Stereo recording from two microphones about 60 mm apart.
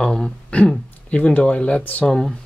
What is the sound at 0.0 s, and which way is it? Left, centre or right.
Speech, centre.